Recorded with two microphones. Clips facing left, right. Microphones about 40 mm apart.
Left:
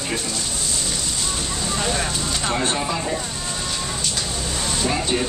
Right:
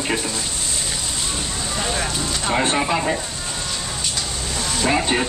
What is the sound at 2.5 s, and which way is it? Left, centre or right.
Speech, right.